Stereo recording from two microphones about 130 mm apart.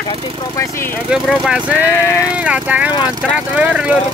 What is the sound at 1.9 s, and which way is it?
Speech, 20° left (ahead or behind).